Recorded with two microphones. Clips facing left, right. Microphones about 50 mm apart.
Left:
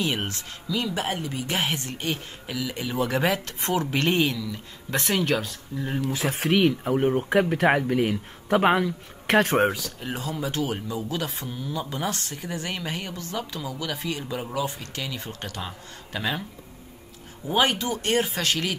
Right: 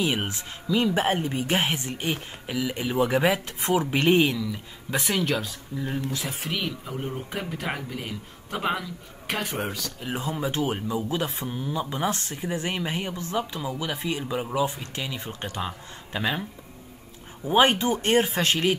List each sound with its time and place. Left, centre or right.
0.0 s speech: centre
0.4 s speech: right; by 5.9 s centre
6.3 s speech: left
9.8 s speech: centre
10.1 s speech: right
17.6 s speech: right